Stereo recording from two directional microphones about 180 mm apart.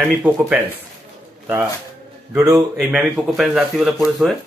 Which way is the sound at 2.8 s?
5° right (ahead or behind).